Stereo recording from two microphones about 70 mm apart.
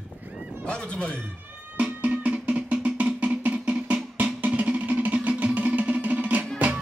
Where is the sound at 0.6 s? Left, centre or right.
Centre.